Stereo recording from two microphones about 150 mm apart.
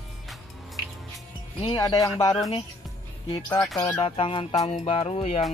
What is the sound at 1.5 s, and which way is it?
Music, 30° left (ahead or behind).